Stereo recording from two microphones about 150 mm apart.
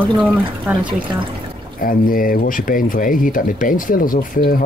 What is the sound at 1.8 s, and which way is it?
Speech, 70° left (ahead or behind).